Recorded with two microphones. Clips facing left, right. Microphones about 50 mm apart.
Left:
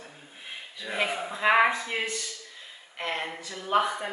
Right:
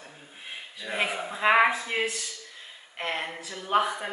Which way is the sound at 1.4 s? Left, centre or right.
Centre.